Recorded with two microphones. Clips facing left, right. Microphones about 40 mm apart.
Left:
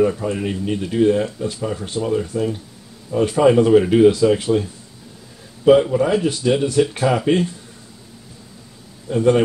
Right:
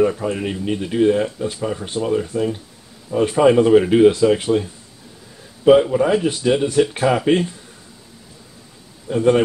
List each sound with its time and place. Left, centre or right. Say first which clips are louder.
0.0 s speech: even; centre
5.7 s speech: right 1 dB; centre
9.1 s speech: even; centre